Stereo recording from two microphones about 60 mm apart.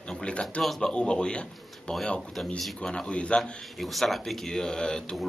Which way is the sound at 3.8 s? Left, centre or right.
Centre.